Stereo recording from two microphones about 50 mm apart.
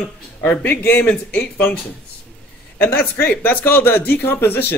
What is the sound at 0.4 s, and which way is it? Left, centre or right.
A man's voice, left.